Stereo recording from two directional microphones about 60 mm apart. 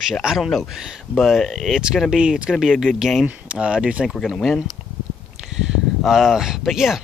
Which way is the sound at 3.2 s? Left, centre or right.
Centre.